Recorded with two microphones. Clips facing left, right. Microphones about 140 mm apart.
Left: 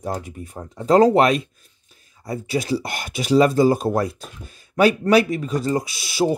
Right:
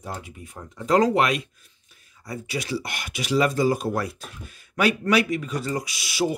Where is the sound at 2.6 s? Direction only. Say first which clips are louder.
Left 5 dB; 30° left (ahead or behind).